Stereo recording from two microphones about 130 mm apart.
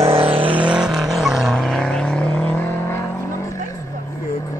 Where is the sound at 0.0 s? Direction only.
45° right (ahead or behind).